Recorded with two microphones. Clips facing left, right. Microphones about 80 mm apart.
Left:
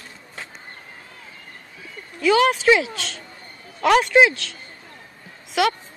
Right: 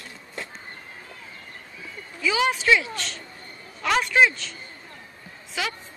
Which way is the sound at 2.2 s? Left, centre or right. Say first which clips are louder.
Left 6 dB; left.